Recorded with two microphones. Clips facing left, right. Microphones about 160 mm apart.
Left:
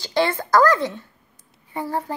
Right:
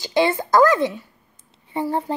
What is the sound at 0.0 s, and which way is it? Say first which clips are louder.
A child's voice: right 2 dB; 15° right (ahead or behind).